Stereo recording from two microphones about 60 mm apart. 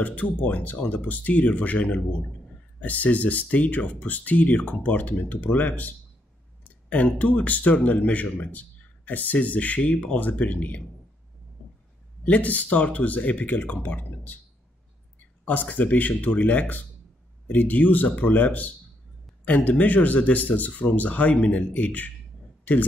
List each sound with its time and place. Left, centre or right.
0.0 s speech: left
12.3 s speech: left
15.4 s speech: left